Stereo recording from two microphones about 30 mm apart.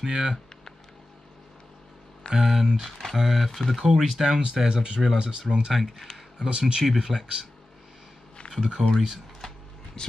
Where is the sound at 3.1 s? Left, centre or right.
Centre.